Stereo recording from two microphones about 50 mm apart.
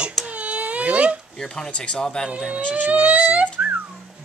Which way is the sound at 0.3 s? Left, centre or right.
Right.